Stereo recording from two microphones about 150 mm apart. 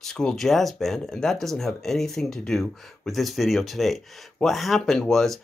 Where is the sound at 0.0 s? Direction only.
5° left (ahead or behind).